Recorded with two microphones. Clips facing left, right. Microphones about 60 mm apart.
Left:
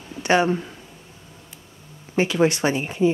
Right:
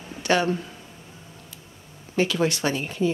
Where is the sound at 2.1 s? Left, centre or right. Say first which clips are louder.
Left 3 dB; left.